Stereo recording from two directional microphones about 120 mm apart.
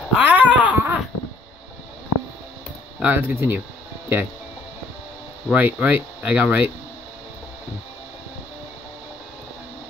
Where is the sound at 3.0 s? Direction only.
15° right (ahead or behind).